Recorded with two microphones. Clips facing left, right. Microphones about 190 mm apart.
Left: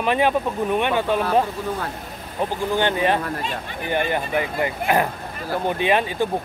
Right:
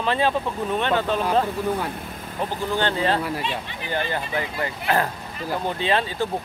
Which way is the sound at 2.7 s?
15° left (ahead or behind).